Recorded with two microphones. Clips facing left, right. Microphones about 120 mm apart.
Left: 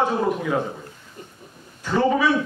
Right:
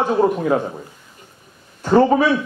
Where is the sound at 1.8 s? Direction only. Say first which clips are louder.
Right 6 dB; 45° right (ahead or behind).